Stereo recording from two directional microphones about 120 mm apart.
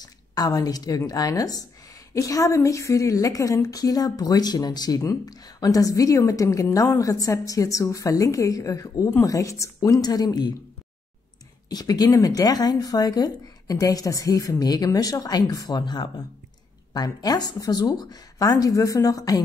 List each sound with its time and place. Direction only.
0.0 s a woman's voice: 35° left (ahead or behind)
11.7 s speech: 30° left (ahead or behind)